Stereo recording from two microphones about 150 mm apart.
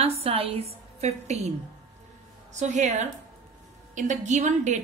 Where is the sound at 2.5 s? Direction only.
50° right (ahead or behind).